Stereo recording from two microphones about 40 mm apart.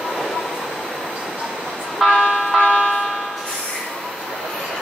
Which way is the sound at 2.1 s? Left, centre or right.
Centre.